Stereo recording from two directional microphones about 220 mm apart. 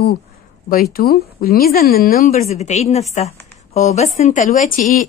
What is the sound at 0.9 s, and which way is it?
Speech, 45° left (ahead or behind).